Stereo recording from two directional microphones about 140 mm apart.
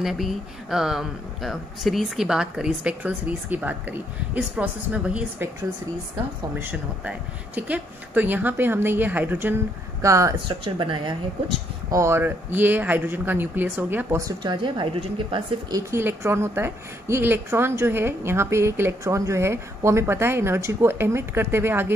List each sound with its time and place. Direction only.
0.0 s a woman's voice: centre (ahead or behind)
6.6 s a woman's voice: 10° right (ahead or behind)
10.5 s speech: 35° right (ahead or behind)
11.9 s a woman's voice: 20° right (ahead or behind); by 15.4 s 35° right (ahead or behind)
15.7 s a woman's voice: 15° right (ahead or behind)